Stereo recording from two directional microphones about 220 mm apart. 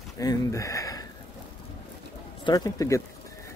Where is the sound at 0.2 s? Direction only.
15° left (ahead or behind).